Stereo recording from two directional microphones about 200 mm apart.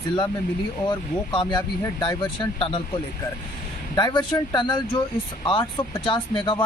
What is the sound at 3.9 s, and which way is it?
Speech, 20° left (ahead or behind).